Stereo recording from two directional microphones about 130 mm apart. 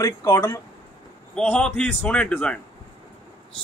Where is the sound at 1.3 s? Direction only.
10° left (ahead or behind).